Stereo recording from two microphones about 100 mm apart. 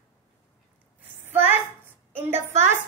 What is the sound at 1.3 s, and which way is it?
A woman's voice, 20° right (ahead or behind).